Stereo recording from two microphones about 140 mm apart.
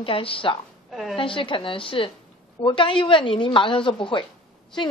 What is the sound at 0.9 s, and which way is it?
Speech, centre (ahead or behind).